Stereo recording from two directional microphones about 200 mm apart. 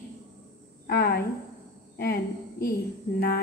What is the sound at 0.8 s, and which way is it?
A woman's voice, 50° left (ahead or behind).